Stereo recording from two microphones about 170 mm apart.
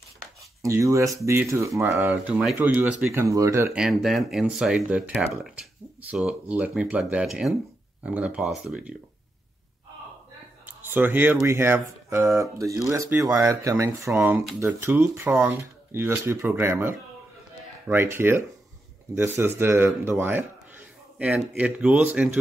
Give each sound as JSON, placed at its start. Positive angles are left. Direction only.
{"t": 0.6, "sound": "speech", "side_deg": -20}
{"t": 3.7, "sound": "speech", "side_deg": 0}
{"t": 10.7, "sound": "speech", "side_deg": -10}